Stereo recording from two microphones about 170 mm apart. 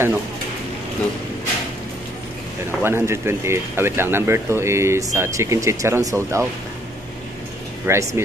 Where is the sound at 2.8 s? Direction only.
15° right (ahead or behind).